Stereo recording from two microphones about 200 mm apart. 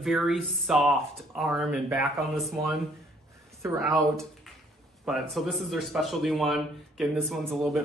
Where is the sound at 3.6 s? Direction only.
15° right (ahead or behind).